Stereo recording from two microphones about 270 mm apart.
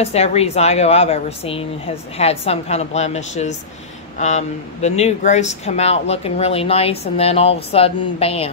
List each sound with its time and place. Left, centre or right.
0.0 s speech: left